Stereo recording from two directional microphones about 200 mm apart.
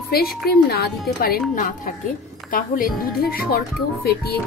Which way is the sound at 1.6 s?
40° left (ahead or behind).